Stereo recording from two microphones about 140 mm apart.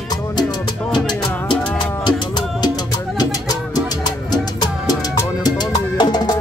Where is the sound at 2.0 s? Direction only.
35° left (ahead or behind).